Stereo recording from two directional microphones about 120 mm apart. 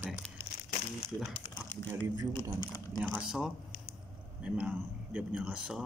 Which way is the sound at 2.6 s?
25° left (ahead or behind).